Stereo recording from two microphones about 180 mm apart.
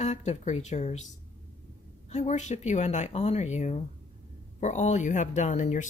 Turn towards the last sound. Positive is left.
turn(degrees=40)  # may be behind; listen again after turning